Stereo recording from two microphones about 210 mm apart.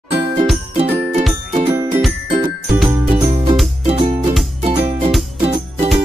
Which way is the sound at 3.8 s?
30° right (ahead or behind).